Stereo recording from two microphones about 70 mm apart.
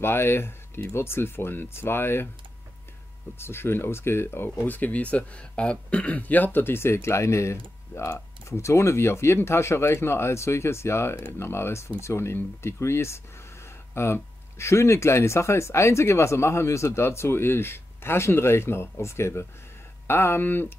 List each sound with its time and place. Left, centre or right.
0.0 s speech: left
3.3 s speech: left
4.6 s speech: left